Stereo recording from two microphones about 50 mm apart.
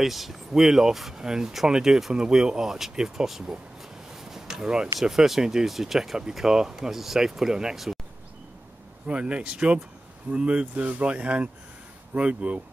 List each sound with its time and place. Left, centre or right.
0.0 s speech: centre
9.0 s speech: right